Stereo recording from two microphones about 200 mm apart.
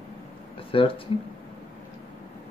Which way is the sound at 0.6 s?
25° left (ahead or behind).